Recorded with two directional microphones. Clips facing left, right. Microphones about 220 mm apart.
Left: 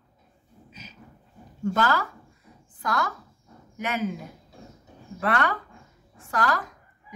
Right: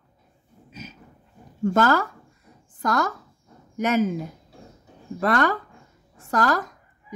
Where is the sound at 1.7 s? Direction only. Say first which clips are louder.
Right 5 dB; 45° right (ahead or behind).